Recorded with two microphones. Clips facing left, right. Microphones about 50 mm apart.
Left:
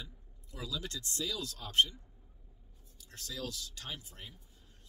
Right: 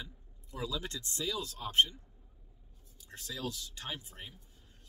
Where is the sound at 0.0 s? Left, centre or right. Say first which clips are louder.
Right 3 dB; right.